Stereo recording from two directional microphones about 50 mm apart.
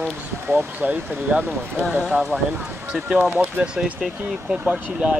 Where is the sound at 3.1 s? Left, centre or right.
Right.